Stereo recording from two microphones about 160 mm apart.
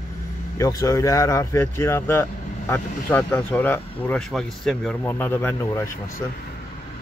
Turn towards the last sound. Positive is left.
turn(degrees=15)  # may be behind; listen again after turning